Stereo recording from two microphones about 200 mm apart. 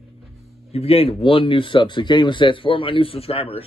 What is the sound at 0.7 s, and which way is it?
Speech, 30° left (ahead or behind).